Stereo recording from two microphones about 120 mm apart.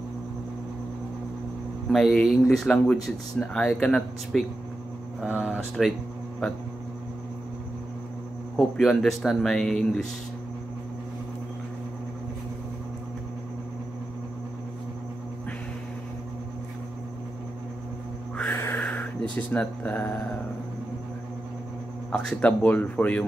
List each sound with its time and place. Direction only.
1.9 s speech: 5° left (ahead or behind)
5.2 s speech: 10° right (ahead or behind)
8.5 s speech: centre (ahead or behind)
18.4 s crow: 15° left (ahead or behind)
19.3 s speech: 15° left (ahead or behind)
22.1 s speech: 10° left (ahead or behind)